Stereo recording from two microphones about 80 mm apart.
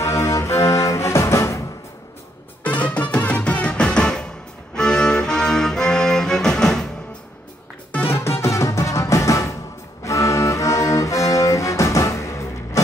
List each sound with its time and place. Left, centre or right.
0.0 s music: left
2.6 s music: centre
8.1 s music: left